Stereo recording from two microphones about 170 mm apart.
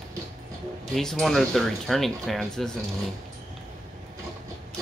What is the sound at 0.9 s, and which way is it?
Speech, centre (ahead or behind).